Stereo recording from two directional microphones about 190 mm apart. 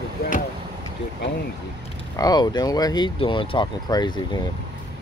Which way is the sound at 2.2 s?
20° left (ahead or behind).